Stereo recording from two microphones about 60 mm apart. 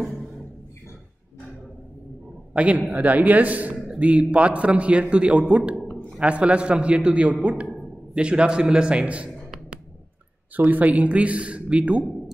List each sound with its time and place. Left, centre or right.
2.5 s a man's voice: right
10.5 s a man's voice: right